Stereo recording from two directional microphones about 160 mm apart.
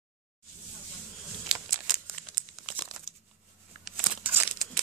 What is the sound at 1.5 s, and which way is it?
Crumpling, centre (ahead or behind).